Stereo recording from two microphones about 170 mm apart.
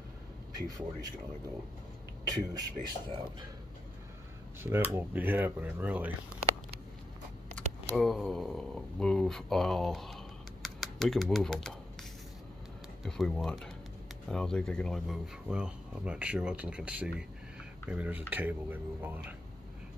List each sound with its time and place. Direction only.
0.7 s a man's voice: 20° right (ahead or behind)
2.2 s a man's voice: 25° right (ahead or behind)
4.9 s speech: 10° right (ahead or behind)
7.5 s speech: centre (ahead or behind)